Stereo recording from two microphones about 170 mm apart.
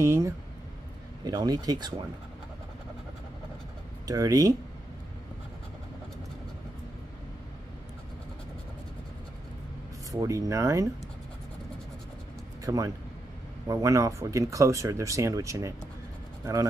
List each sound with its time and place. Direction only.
0.0 s speech: 15° right (ahead or behind)
4.1 s speech: 20° right (ahead or behind)
10.2 s speech: 20° right (ahead or behind)
12.6 s a man's voice: 20° right (ahead or behind)